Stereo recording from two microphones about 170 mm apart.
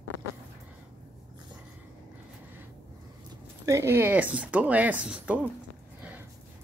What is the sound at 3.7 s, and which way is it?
Speech, 15° right (ahead or behind).